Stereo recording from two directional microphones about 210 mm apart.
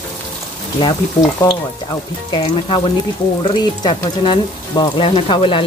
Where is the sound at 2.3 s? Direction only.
20° left (ahead or behind).